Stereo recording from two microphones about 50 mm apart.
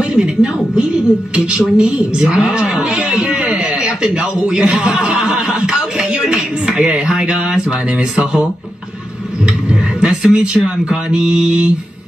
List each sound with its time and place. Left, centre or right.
0.0 s a woman's voice: centre
9.7 s speech: centre